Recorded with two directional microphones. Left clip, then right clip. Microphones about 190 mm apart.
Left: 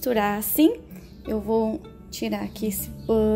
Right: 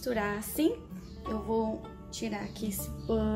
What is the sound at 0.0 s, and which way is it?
Speech, 50° left (ahead or behind).